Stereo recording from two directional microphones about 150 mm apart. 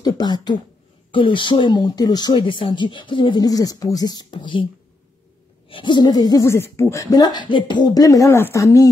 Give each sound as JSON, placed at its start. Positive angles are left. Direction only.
{"t": 0.0, "sound": "speech", "side_deg": 30}
{"t": 5.7, "sound": "speech", "side_deg": 35}